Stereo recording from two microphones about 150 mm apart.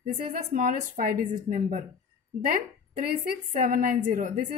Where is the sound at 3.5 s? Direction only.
60° right (ahead or behind).